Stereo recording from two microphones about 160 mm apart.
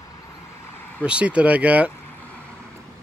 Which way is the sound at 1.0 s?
5° right (ahead or behind).